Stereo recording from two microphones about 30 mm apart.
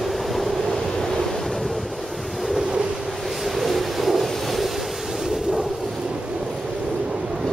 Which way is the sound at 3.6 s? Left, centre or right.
Centre.